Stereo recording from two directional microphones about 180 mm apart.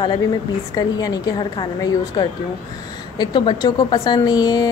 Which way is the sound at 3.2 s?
25° left (ahead or behind).